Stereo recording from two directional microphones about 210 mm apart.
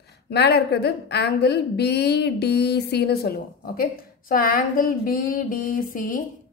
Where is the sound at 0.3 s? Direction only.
50° left (ahead or behind).